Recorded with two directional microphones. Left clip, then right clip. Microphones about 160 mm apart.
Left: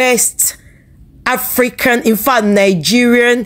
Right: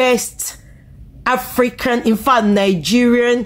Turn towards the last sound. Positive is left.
turn(degrees=25)  # may be behind; listen again after turning